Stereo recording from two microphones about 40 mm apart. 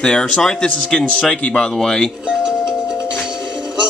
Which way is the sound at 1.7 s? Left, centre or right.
Centre.